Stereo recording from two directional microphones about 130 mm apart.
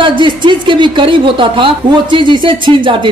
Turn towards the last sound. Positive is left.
turn(degrees=-40)  # may be behind; listen again after turning